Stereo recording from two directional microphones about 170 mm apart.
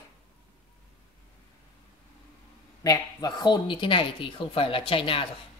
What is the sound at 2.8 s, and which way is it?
Speech, 25° left (ahead or behind).